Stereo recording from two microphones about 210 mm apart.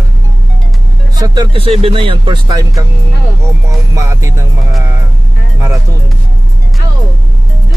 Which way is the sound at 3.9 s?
15° right (ahead or behind).